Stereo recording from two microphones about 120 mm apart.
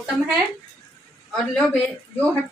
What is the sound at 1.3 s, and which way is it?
Speech, 5° left (ahead or behind).